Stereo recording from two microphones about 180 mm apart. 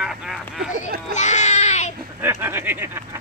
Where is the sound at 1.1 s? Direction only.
40° left (ahead or behind).